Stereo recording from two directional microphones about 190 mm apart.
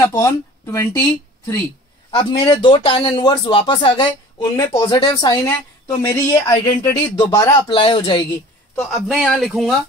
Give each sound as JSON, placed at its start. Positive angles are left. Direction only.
{"t": 0.0, "sound": "speech", "side_deg": 15}
{"t": 2.0, "sound": "speech", "side_deg": 25}
{"t": 8.7, "sound": "speech", "side_deg": 0}